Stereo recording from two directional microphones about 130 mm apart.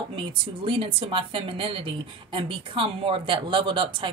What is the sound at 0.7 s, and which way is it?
A woman's voice, 40° right (ahead or behind).